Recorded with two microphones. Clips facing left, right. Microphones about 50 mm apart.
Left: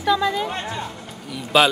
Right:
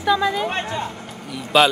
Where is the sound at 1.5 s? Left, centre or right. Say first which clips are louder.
Right 1 dB; centre.